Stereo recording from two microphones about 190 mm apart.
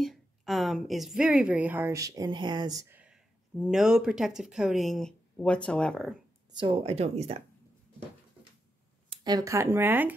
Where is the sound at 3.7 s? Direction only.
5° right (ahead or behind).